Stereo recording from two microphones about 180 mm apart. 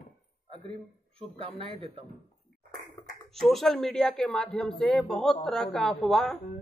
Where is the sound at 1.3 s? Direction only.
30° right (ahead or behind).